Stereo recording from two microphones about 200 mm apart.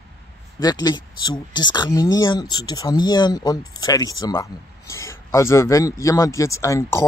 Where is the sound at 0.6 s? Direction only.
20° left (ahead or behind).